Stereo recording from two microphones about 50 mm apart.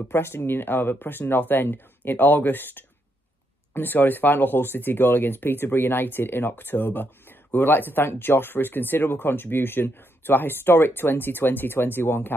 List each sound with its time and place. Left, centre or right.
0.1 s speech: left